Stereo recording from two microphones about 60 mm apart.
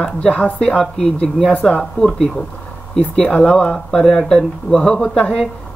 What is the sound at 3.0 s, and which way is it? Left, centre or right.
Speech, centre.